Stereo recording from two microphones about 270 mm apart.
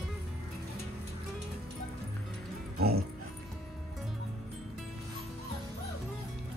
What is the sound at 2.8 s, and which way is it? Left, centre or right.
Speech, right.